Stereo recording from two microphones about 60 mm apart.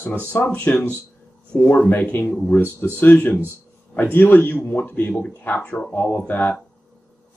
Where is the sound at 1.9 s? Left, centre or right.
Left.